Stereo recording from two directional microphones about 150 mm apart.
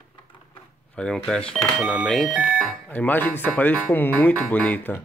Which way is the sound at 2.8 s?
10° left (ahead or behind).